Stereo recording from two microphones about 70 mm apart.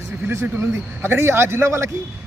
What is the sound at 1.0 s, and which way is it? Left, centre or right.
Speech, right.